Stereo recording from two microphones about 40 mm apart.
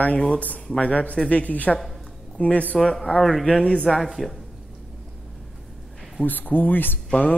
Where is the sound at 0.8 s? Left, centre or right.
Left.